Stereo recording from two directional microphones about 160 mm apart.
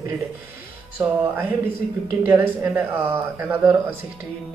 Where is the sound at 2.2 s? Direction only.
15° right (ahead or behind).